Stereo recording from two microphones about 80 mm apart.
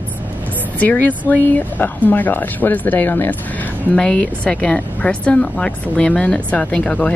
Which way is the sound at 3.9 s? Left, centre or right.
Centre.